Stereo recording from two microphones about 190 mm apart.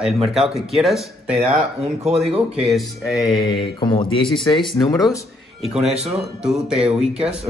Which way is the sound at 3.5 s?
25° left (ahead or behind).